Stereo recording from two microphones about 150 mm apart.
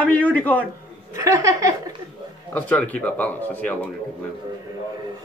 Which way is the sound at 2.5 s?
10° left (ahead or behind).